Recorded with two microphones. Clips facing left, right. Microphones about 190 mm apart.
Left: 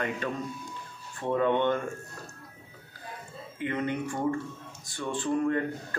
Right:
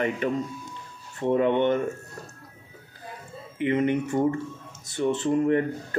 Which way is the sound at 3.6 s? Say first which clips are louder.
Right 7 dB; 20° right (ahead or behind).